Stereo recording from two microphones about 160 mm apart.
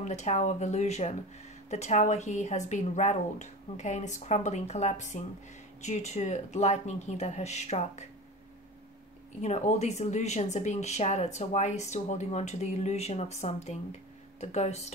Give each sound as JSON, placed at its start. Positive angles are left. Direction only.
{"t": 0.0, "sound": "speech", "side_deg": 45}
{"t": 9.4, "sound": "speech", "side_deg": 45}